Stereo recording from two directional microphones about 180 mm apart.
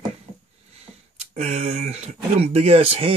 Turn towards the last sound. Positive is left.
turn(degrees=-30)  # may be behind; listen again after turning